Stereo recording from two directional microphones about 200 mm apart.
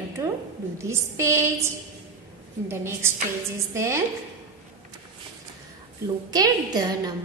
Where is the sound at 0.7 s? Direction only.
15° right (ahead or behind).